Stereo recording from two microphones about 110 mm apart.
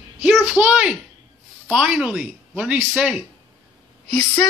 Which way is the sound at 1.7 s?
10° right (ahead or behind).